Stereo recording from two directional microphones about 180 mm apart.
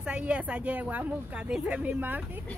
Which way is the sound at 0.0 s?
5° right (ahead or behind).